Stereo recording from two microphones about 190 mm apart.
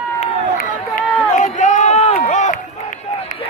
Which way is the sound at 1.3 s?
40° left (ahead or behind).